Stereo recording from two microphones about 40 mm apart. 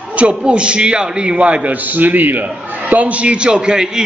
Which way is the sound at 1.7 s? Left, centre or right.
Right.